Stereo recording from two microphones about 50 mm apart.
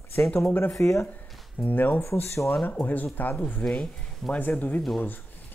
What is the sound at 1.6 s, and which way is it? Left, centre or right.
Speech, left.